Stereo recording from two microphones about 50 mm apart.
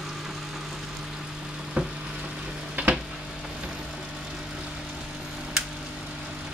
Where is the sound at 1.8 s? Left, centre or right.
Right.